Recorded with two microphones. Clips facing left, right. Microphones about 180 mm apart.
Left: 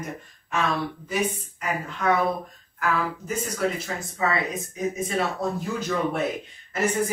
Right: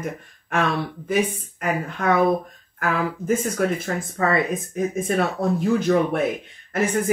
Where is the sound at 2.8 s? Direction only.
55° right (ahead or behind).